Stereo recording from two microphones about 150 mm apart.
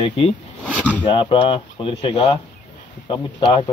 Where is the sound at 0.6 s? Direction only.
10° left (ahead or behind).